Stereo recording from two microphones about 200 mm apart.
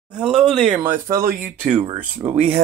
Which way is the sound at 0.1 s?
5° right (ahead or behind).